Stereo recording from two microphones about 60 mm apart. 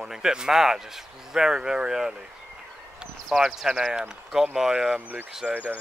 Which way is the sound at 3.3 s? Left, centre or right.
Centre.